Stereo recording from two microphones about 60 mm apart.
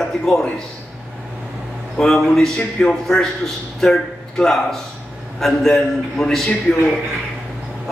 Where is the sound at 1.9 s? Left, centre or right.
Centre.